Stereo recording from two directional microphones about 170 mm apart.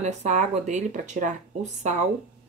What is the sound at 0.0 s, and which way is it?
Speech, 45° right (ahead or behind).